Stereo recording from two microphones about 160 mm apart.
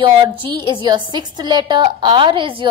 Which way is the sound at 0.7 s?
30° right (ahead or behind).